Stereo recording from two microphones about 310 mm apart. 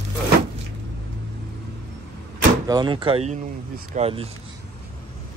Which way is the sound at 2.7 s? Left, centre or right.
Centre.